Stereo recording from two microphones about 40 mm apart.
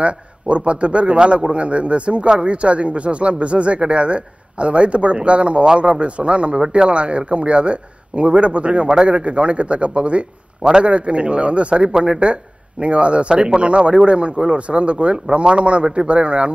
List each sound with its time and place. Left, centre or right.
0.0 s a man's voice: right